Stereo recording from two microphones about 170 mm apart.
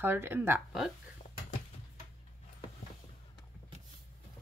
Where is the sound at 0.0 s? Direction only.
15° right (ahead or behind).